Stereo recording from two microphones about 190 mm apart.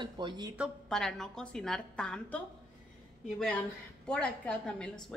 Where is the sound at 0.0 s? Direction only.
25° right (ahead or behind).